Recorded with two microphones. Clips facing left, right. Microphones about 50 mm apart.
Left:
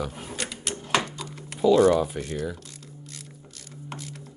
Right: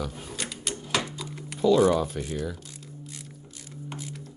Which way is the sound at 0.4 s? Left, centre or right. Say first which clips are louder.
Left 1 dB; centre.